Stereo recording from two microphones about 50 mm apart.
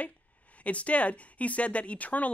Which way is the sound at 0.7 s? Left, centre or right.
Left.